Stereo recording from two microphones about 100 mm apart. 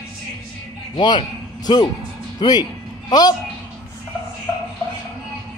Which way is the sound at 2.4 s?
45° left (ahead or behind).